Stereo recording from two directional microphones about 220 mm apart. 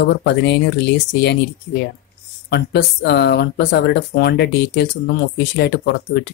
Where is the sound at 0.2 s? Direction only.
50° left (ahead or behind).